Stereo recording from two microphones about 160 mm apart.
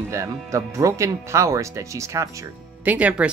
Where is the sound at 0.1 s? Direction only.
20° right (ahead or behind).